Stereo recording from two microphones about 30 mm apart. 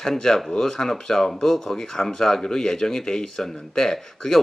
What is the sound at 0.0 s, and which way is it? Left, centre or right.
Speech, centre.